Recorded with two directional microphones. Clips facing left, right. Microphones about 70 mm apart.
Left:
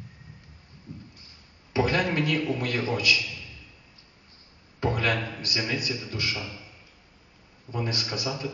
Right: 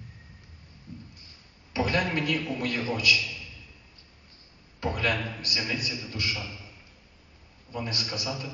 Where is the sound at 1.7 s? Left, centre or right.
Left.